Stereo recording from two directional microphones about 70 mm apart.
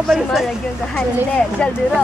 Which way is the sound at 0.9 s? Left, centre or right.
Centre.